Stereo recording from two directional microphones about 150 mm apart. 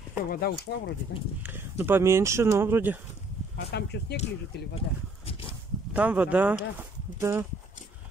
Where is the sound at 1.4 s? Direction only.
15° right (ahead or behind).